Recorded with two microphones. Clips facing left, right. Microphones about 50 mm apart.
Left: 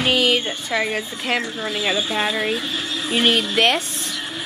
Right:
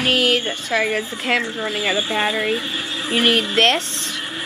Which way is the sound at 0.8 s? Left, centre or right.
Centre.